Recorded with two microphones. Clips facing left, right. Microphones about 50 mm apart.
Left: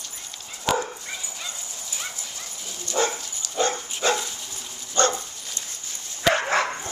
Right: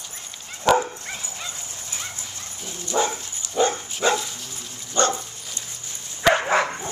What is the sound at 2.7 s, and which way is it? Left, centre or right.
Dog, centre.